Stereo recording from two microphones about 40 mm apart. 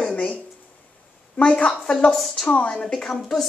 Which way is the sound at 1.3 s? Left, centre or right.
Left.